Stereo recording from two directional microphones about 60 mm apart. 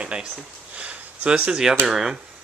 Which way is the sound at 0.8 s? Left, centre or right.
Right.